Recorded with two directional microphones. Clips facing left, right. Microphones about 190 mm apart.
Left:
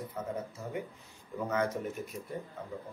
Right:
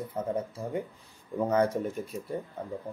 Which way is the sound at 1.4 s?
35° right (ahead or behind).